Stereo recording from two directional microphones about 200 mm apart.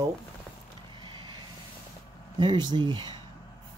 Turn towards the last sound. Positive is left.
turn(degrees=-20)  # may be behind; listen again after turning